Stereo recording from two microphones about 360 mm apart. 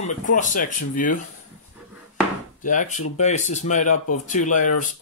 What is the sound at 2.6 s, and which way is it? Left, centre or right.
Speech, left.